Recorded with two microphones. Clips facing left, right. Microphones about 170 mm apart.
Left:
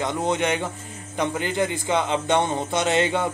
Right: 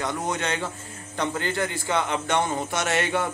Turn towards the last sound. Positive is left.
turn(degrees=20)  # may be behind; listen again after turning